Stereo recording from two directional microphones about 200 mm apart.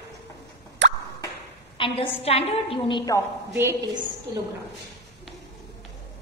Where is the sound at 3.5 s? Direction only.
10° right (ahead or behind).